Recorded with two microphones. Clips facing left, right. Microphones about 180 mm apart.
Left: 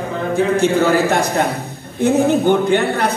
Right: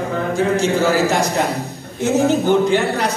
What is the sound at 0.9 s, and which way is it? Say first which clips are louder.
A man's voice: left 1 dB; 60° left (ahead or behind).